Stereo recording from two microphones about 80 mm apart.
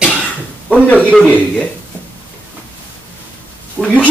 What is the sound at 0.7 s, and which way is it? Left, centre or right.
Speech, centre.